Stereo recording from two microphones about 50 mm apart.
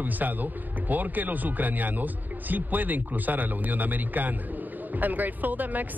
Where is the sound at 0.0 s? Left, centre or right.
Right.